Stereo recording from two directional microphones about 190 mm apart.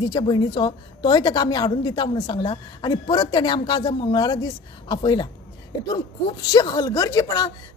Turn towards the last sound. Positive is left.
turn(degrees=20)  # may be behind; listen again after turning